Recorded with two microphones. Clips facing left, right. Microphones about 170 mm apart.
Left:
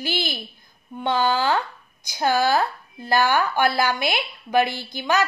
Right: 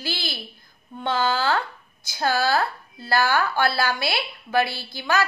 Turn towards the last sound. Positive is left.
turn(degrees=20)  # may be behind; listen again after turning